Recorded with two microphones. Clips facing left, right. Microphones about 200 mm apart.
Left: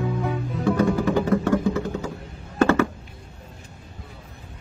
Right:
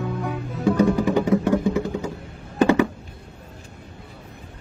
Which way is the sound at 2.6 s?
15° right (ahead or behind).